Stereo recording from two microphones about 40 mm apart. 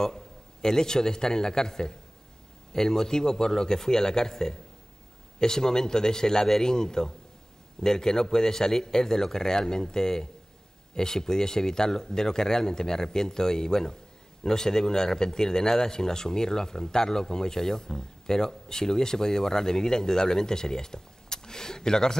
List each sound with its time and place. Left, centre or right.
0.0 s a man's voice: centre